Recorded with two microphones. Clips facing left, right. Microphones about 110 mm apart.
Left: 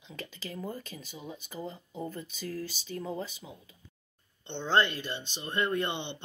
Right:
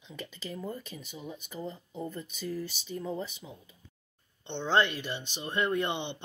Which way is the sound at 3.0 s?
10° left (ahead or behind).